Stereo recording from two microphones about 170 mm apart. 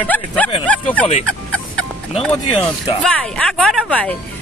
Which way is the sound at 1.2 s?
5° left (ahead or behind).